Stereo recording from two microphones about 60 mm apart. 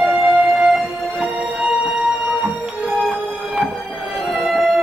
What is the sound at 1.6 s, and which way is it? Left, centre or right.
Music, right.